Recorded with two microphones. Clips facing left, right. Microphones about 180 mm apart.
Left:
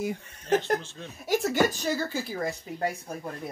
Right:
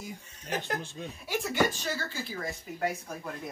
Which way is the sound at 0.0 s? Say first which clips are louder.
Left 11 dB; 70° left (ahead or behind).